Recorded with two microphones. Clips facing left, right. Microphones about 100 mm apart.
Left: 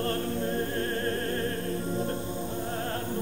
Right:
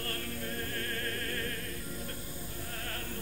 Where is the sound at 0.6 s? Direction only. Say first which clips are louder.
Left 9 dB; 30° left (ahead or behind).